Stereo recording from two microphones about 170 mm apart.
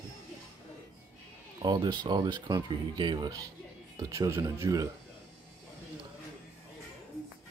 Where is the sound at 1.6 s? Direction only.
25° right (ahead or behind).